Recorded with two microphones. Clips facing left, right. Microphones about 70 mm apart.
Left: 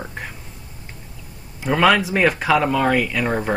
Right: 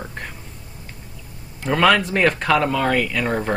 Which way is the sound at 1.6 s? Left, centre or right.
Centre.